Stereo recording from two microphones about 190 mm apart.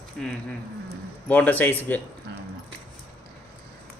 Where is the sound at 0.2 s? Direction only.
5° left (ahead or behind).